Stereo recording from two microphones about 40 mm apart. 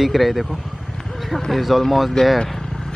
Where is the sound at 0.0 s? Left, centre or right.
Centre.